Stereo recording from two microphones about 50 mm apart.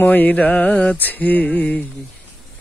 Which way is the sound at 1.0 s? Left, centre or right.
Left.